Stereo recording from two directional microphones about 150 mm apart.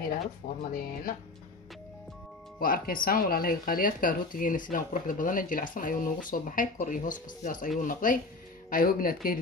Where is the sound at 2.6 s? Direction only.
65° left (ahead or behind).